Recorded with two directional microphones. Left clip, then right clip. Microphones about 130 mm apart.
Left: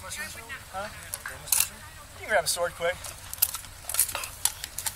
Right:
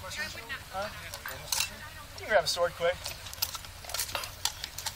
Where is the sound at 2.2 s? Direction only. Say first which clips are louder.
Left 1 dB; 15° left (ahead or behind).